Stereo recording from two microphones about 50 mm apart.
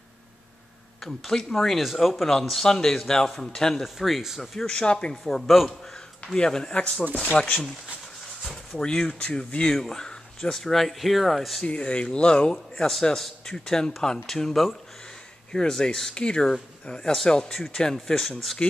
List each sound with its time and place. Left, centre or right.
1.0 s speech: centre
1.8 s speech: centre
3.8 s speech: centre
4.6 s speech: centre
5.5 s speech: centre
6.2 s speech: centre
8.7 s speech: centre
11.6 s speech: left; by 18.6 s centre